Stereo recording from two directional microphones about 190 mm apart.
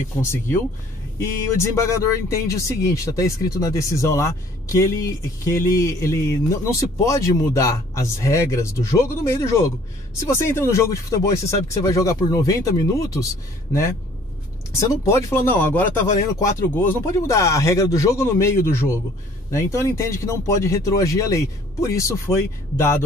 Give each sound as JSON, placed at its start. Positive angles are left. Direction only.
{"t": 0.2, "sound": "speech", "side_deg": 15}
{"t": 14.7, "sound": "speech", "side_deg": 15}